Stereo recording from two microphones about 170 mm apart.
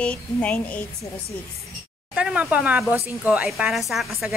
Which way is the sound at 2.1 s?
5° right (ahead or behind).